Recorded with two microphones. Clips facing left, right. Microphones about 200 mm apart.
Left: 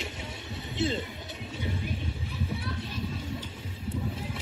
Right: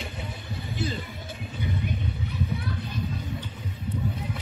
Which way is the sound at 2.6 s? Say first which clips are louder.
Right 3 dB; 25° left (ahead or behind).